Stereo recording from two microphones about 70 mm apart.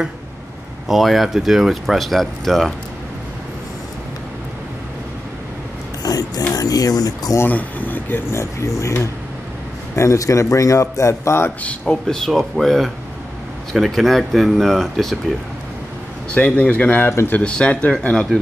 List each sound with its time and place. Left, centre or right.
0.8 s speech: centre
6.0 s mechanisms: left
6.5 s speech: left
7.4 s speech: left
8.3 s speech: left
9.9 s speech: left
11.8 s speech: centre
16.3 s speech: centre